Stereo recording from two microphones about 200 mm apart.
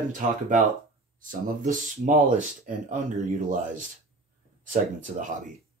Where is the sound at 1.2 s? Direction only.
40° right (ahead or behind).